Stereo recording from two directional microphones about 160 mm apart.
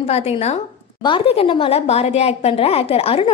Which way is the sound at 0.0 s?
40° left (ahead or behind).